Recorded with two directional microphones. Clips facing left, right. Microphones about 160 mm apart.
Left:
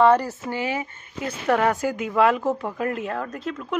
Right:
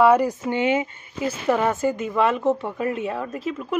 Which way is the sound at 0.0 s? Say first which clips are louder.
Right 1 dB; 10° right (ahead or behind).